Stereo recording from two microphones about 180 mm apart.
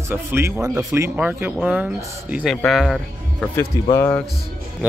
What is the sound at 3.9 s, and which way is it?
Speech, 10° left (ahead or behind).